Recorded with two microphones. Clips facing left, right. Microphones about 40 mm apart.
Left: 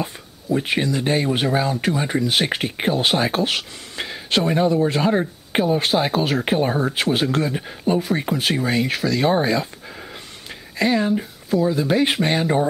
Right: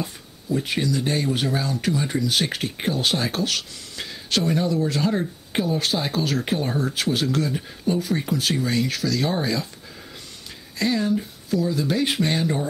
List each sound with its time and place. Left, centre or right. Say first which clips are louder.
0.0 s speech: left 4 dB; left
10.8 s speech: left 3 dB; left